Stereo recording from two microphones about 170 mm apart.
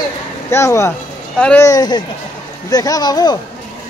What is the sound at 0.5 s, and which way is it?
Speech, 15° left (ahead or behind).